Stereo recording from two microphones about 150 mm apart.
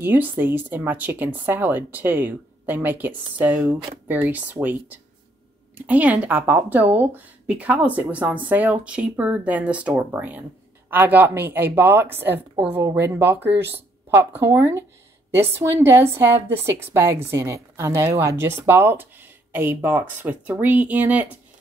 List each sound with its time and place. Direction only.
0.0 s a woman's voice: 10° right (ahead or behind)